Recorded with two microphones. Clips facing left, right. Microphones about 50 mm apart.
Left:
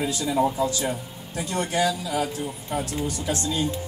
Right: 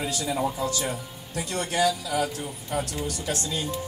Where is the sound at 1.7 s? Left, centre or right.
Left.